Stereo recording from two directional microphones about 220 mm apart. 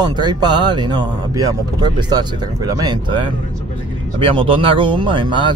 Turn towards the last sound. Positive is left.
turn(degrees=-20)  # may be behind; listen again after turning